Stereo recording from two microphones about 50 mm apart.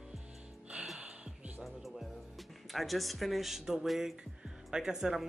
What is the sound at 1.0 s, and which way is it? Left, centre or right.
Music, right.